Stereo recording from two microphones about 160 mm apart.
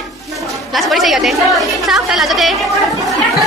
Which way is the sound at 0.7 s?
Centre (ahead or behind).